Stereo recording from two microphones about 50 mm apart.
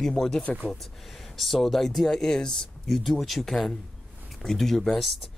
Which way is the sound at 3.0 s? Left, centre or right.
Centre.